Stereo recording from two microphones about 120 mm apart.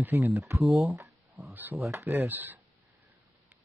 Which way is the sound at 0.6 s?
Centre (ahead or behind).